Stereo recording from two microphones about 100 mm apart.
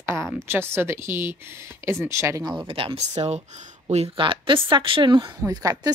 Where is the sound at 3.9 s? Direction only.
75° right (ahead or behind); by 5.2 s 50° right (ahead or behind).